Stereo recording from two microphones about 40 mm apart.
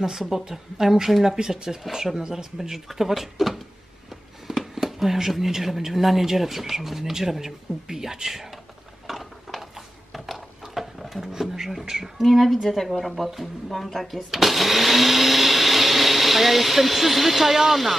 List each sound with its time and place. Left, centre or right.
0.0 s speech: centre
4.5 s a sound: centre
4.8 s speech: centre
9.0 s mechanisms: centre
10.1 s a sound: centre
11.8 s speech: centre
12.2 s speech: centre
14.3 s blender: centre